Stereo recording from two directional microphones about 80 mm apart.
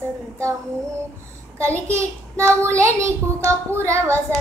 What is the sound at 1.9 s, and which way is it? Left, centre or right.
Speech, right.